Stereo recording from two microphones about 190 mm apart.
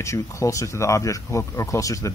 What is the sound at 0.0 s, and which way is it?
Speech, 15° left (ahead or behind).